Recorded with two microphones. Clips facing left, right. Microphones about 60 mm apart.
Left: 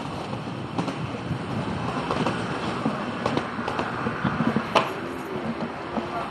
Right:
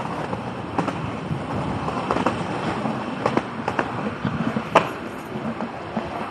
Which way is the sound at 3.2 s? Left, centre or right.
Right.